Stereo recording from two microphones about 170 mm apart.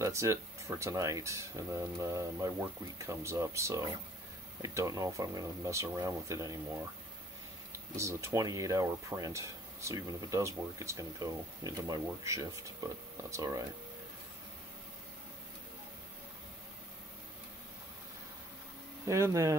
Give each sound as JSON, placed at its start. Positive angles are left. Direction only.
{"t": 0.0, "sound": "speech", "side_deg": -15}
{"t": 7.9, "sound": "speech", "side_deg": -15}
{"t": 19.0, "sound": "speech", "side_deg": -15}